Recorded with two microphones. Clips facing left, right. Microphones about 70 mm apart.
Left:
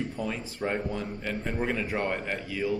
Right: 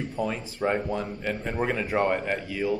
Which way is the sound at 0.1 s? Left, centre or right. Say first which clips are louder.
Right 4 dB; right.